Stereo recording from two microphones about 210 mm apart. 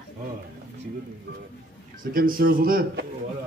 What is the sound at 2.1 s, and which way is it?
Speech, 45° right (ahead or behind).